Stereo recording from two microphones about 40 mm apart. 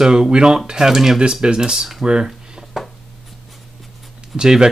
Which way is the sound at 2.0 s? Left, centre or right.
Centre.